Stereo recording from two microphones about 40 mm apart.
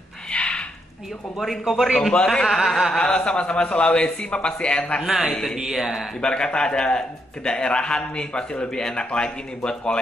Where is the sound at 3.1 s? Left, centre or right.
Left.